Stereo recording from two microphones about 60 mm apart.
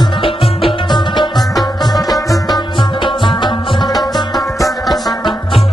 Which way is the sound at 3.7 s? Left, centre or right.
Centre.